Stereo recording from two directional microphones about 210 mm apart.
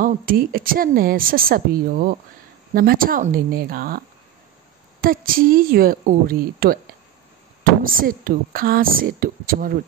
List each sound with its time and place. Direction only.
0.0 s speech: 45° right (ahead or behind)
5.0 s speech: 45° right (ahead or behind)